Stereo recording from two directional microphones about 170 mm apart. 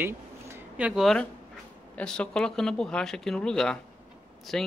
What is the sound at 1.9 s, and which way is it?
Speech, 5° left (ahead or behind).